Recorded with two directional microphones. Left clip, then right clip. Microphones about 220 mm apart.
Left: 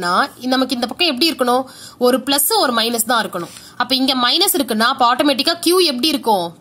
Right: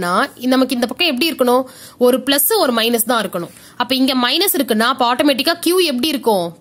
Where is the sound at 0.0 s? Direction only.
40° right (ahead or behind).